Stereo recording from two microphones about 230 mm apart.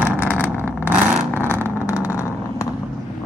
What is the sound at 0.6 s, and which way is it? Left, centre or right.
Vehicle, centre.